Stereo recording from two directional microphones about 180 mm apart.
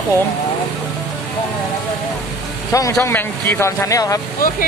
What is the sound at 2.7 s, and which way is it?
Speech, 20° left (ahead or behind).